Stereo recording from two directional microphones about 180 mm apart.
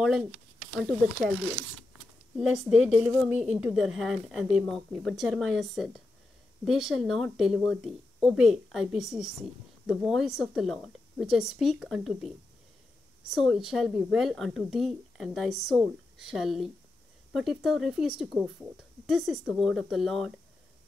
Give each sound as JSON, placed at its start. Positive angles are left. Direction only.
{"t": 0.0, "sound": "speech", "side_deg": -5}
{"t": 2.3, "sound": "speech", "side_deg": -5}